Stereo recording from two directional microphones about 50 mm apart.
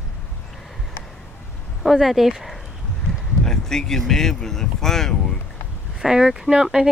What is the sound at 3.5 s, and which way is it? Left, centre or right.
Speech, centre.